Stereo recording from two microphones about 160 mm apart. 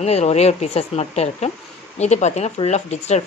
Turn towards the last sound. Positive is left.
turn(degrees=45)  # may be behind; listen again after turning